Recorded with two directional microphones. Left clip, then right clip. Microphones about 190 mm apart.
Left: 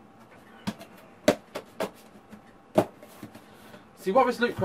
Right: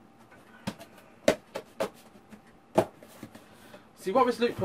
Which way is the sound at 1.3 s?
Centre (ahead or behind).